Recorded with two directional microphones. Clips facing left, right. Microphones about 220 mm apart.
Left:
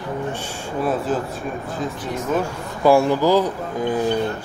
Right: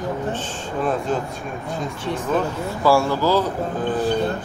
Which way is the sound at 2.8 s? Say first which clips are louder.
Left 3 dB; 20° left (ahead or behind).